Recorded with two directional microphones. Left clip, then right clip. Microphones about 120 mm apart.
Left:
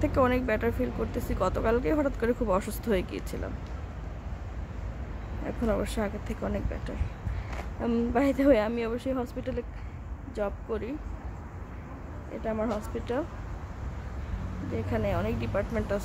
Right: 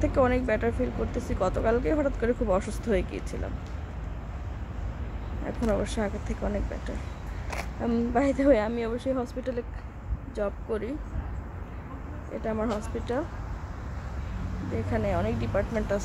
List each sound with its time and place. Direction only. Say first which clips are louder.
0.0 s speech: right 1 dB; 25° left (ahead or behind)
5.4 s speech: right 1 dB; 20° left (ahead or behind)
7.8 s speech: right 1 dB; 20° left (ahead or behind)
10.7 s speech: right 2 dB; 5° right (ahead or behind)
12.4 s speech: even; centre (ahead or behind)
14.9 s speech: right 2 dB; 10° left (ahead or behind)